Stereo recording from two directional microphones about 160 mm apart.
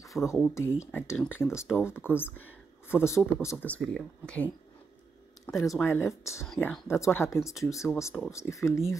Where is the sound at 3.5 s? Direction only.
5° left (ahead or behind).